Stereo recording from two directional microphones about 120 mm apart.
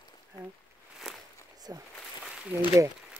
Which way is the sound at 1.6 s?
35° right (ahead or behind).